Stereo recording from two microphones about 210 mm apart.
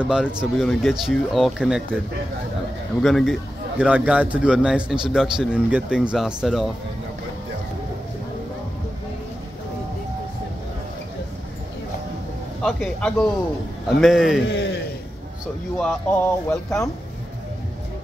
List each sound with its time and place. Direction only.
0.0 s a man's voice: 5° right (ahead or behind)
3.0 s a man's voice: centre (ahead or behind)
12.6 s a man's voice: 5° left (ahead or behind)
14.5 s speech: 55° left (ahead or behind)
15.8 s speech: 5° left (ahead or behind)